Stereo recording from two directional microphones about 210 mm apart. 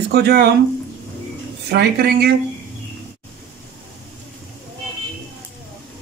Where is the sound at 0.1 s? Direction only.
50° right (ahead or behind).